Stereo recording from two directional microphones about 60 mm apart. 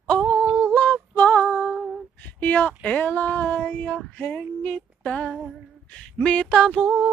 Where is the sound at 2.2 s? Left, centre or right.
Left.